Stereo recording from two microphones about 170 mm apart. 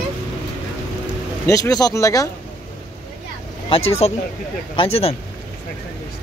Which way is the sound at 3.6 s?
35° left (ahead or behind).